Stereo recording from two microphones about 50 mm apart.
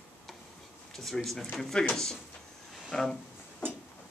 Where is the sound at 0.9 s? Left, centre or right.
Centre.